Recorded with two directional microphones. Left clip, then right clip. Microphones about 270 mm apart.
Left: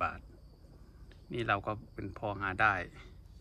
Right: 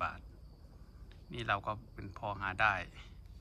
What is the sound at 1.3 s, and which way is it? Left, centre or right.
Speech, centre.